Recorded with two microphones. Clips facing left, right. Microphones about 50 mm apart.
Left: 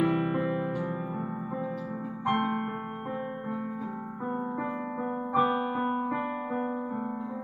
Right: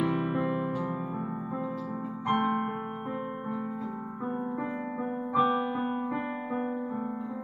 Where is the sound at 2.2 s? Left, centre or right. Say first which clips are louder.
Right 1 dB; centre.